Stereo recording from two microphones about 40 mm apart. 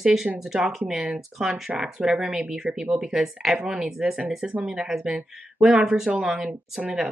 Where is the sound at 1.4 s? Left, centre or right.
Centre; by 2.9 s right.